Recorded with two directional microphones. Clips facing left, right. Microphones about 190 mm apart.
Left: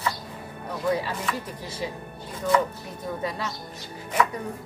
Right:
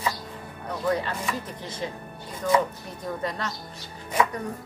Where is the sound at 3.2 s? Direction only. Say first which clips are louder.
Even; 5° left (ahead or behind).